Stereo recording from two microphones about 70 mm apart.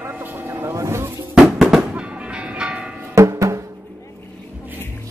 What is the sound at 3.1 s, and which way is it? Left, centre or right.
Music, right.